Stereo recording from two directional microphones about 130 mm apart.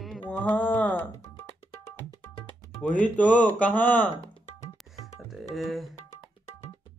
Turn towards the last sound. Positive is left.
turn(degrees=0)  # may be behind; listen again after turning